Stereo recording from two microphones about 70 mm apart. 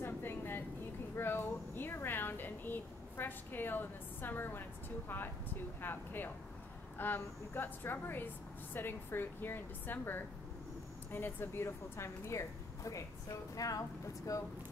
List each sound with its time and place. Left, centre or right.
0.0 s vehicle: left
1.1 s a woman's voice: left